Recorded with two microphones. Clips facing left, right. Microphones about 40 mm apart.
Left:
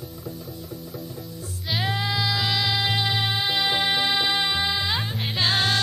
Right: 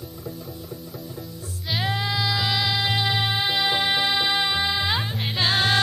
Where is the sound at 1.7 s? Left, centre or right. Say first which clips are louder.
Even; centre.